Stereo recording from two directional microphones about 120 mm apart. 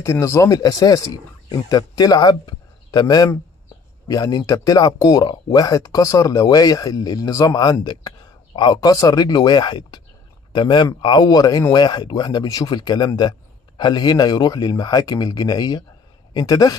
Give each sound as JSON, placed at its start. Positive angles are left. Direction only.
{"t": 0.0, "sound": "speech", "side_deg": 25}